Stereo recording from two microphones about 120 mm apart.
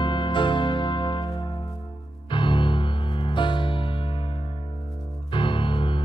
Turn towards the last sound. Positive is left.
turn(degrees=45)  # may be behind; listen again after turning